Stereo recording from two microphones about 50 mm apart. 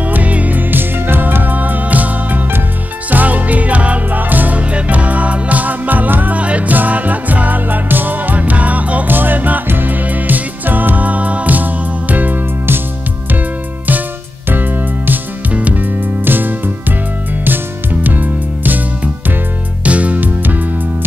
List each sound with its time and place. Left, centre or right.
0.0 s music: right
6.3 s music: right
14.5 s music: right
16.3 s music: right
18.0 s music: right
19.8 s music: right